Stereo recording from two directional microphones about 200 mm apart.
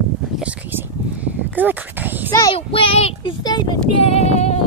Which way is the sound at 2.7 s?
30° left (ahead or behind).